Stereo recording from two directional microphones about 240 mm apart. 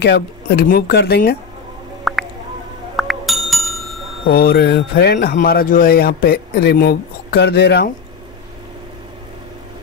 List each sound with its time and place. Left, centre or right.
0.0 s speech: left
2.1 s squish: centre
3.0 s bicycle bell: centre
4.3 s speech: left